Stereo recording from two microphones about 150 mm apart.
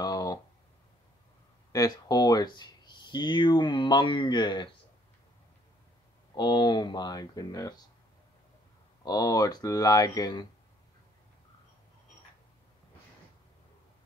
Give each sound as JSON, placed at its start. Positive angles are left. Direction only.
{"t": 0.0, "sound": "a sound", "side_deg": 25}
{"t": 1.7, "sound": "speech", "side_deg": 25}
{"t": 6.3, "sound": "speech", "side_deg": 30}
{"t": 9.0, "sound": "speech", "side_deg": 25}